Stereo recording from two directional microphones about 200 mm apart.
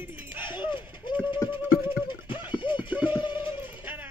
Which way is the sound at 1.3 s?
25° left (ahead or behind).